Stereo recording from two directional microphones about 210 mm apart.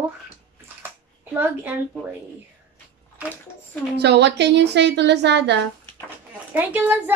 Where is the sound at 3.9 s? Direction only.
55° right (ahead or behind).